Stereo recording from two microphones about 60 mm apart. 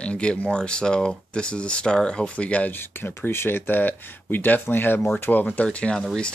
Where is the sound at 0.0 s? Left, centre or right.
Centre.